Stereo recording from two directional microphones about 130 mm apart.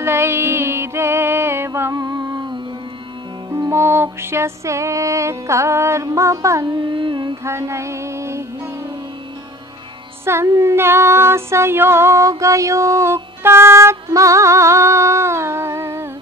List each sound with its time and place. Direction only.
0.0 s music: 20° right (ahead or behind)
3.5 s female singing: 20° right (ahead or behind)
6.9 s carnatic music: 40° right (ahead or behind)
7.4 s female singing: 20° right (ahead or behind)
10.2 s female singing: 20° right (ahead or behind)